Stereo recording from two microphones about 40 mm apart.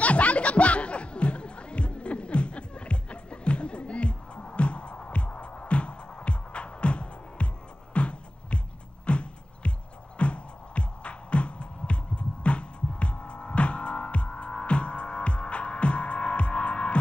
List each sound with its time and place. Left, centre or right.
0.0 s music: left